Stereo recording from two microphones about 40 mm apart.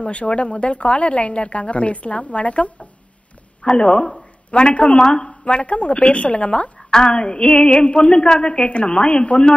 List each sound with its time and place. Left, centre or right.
0.0 s speech: left
3.6 s a woman's voice: left
6.8 s a sound: centre
7.1 s a woman's voice: left